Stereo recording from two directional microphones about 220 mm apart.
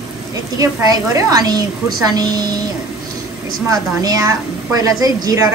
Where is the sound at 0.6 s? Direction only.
15° right (ahead or behind).